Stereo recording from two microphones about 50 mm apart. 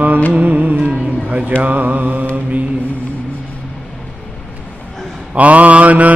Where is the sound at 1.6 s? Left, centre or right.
Right.